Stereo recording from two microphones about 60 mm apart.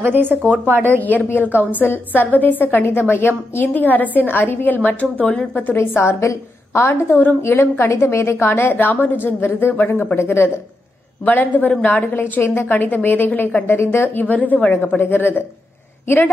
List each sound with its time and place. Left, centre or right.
0.0 s speech: right
1.0 s a woman's voice: left
5.2 s a woman's voice: centre
5.5 s a woman's voice: left
5.8 s a woman's voice: left
7.1 s a woman's voice: left
11.2 s a woman's voice: left
13.9 s a woman's voice: left
14.2 s a woman's voice: left